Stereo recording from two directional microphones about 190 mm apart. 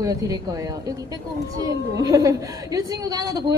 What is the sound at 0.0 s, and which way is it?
A woman's voice, 20° right (ahead or behind).